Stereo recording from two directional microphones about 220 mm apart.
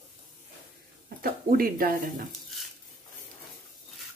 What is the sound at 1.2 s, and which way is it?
Speech, 40° right (ahead or behind).